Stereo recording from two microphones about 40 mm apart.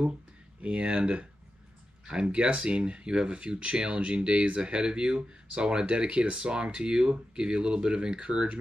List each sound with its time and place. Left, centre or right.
0.6 s speech: right